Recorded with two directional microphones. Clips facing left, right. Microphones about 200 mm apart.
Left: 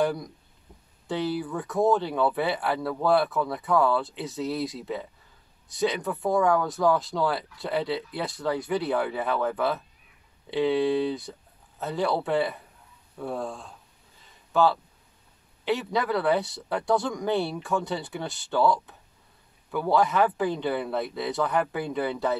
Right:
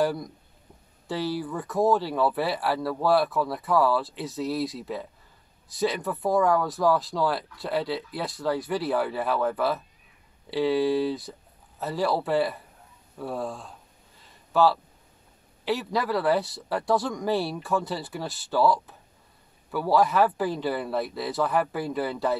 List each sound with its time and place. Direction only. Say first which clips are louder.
0.0 s speech: even; 5° right (ahead or behind)